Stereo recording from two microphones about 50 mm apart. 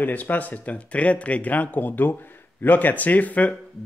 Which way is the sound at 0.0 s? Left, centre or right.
Left.